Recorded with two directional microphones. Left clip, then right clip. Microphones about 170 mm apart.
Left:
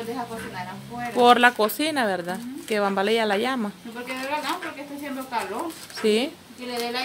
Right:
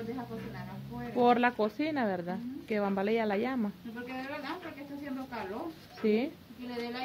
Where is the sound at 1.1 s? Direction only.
20° left (ahead or behind).